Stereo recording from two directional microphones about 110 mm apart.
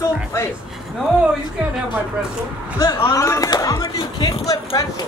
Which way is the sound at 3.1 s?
30° left (ahead or behind).